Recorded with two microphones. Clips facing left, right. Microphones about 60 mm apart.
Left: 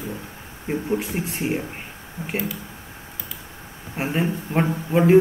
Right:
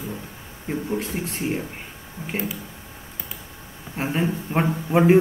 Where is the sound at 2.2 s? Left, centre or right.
Left.